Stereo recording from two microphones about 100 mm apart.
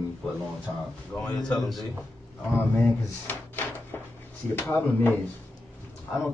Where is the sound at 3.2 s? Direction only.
20° left (ahead or behind).